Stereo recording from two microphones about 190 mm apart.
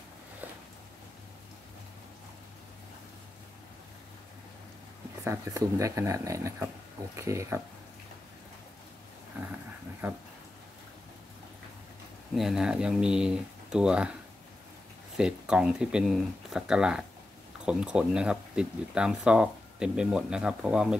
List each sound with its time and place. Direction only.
5.2 s speech: 15° right (ahead or behind)
12.4 s speech: centre (ahead or behind)
15.1 s speech: 5° right (ahead or behind)